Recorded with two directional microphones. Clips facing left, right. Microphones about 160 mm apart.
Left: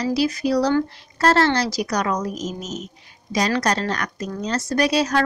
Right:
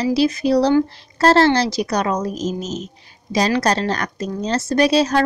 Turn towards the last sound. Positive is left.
turn(degrees=-30)  # may be behind; listen again after turning